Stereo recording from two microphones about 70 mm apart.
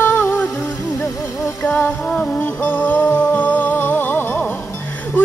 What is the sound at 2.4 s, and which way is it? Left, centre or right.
Music, left.